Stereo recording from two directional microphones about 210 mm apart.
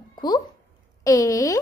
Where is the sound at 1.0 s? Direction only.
15° left (ahead or behind).